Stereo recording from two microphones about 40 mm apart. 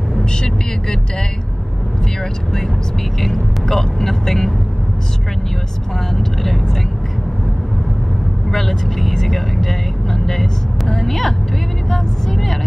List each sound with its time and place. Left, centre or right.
0.3 s vehicle: centre
3.2 s speech: centre
6.1 s speech: centre
8.5 s speech: centre